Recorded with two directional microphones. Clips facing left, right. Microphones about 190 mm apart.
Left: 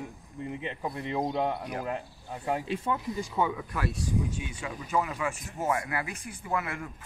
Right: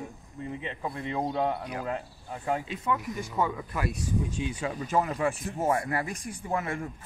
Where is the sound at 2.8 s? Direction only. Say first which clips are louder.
Right 3 dB; 30° left (ahead or behind).